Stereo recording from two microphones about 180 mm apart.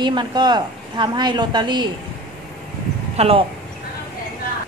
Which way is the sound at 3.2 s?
35° right (ahead or behind).